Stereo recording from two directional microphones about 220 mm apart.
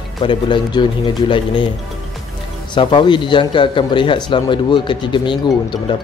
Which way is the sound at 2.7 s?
20° left (ahead or behind).